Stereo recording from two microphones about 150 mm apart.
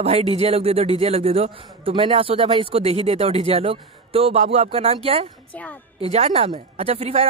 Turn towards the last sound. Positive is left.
turn(degrees=-40)  # may be behind; listen again after turning